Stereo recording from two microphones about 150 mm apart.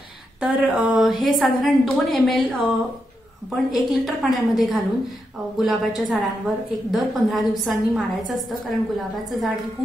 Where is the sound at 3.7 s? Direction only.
Centre (ahead or behind).